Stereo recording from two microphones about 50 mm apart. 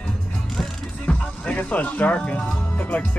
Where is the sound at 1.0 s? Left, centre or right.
Left.